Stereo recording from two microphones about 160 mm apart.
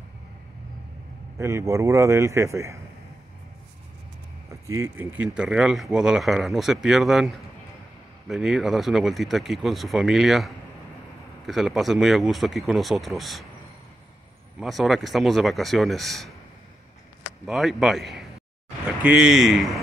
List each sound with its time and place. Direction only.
1.4 s a man's voice: 20° right (ahead or behind)
4.5 s speech: 20° right (ahead or behind); by 13.5 s centre (ahead or behind)
14.6 s speech: centre (ahead or behind)
17.5 s speech: centre (ahead or behind)